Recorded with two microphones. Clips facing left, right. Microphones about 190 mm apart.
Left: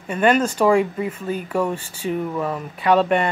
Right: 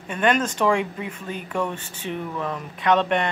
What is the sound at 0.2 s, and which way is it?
Speech, 5° left (ahead or behind).